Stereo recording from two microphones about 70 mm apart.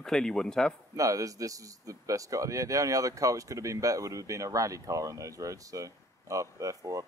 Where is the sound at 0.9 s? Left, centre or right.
Right.